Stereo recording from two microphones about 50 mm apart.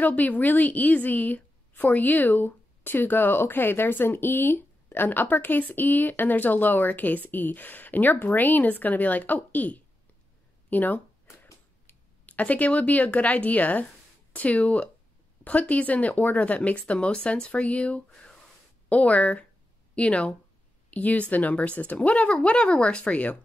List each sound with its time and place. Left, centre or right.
0.0 s a woman's voice: left
12.3 s a woman's voice: left